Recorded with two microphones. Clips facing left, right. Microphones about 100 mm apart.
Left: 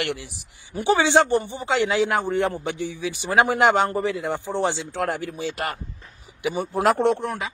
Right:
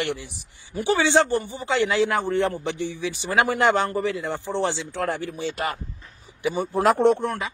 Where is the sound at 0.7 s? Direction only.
20° left (ahead or behind).